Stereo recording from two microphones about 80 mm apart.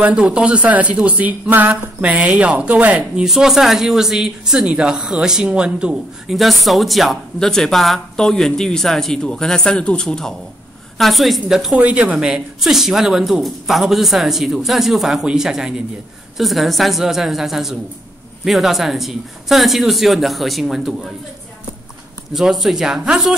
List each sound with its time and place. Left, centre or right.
0.0 s speech: centre
3.3 s speech: centre
6.3 s speech: centre
22.3 s speech: centre